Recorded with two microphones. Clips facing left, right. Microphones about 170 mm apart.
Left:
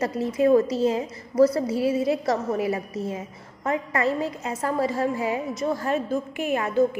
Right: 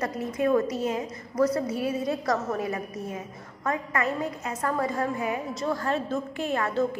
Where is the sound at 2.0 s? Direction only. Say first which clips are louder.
Left 3 dB; 25° left (ahead or behind).